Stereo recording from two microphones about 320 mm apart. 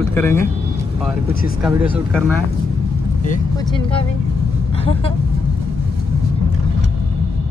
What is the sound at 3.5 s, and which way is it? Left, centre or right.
Speech, centre.